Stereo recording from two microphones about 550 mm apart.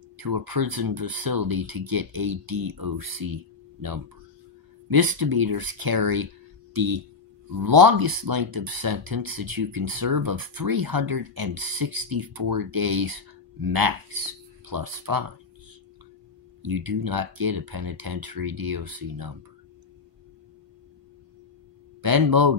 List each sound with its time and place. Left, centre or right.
0.2 s speech: right
4.8 s speech: right
16.6 s speech: right
22.0 s speech: right